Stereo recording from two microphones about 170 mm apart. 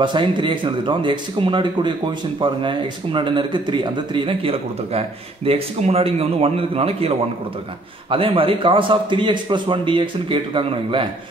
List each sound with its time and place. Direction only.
0.0 s a man's voice: 30° right (ahead or behind)